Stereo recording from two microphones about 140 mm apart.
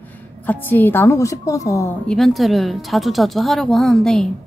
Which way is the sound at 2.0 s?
Centre (ahead or behind).